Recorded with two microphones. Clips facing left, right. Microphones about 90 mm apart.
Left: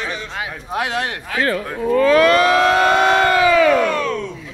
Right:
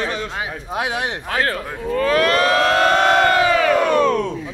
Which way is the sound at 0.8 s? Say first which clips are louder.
Left 1 dB; 15° right (ahead or behind).